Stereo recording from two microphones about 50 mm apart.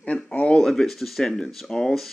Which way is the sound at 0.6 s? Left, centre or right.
Centre.